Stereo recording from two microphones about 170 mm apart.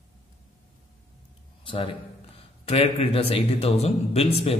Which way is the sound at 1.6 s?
30° left (ahead or behind).